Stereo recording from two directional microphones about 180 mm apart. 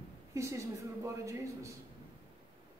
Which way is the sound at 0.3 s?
15° right (ahead or behind).